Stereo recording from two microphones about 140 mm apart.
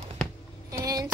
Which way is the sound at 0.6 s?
25° right (ahead or behind).